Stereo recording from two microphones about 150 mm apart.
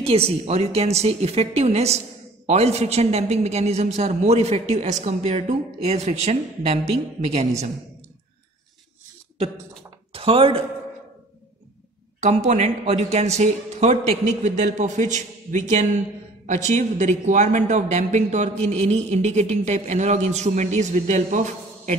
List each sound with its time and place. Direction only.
0.0 s a man's voice: 45° right (ahead or behind)
10.1 s speech: 40° right (ahead or behind)
12.2 s a man's voice: 50° right (ahead or behind)